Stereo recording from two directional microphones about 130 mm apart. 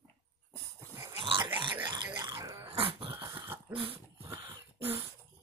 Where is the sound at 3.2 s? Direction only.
20° right (ahead or behind).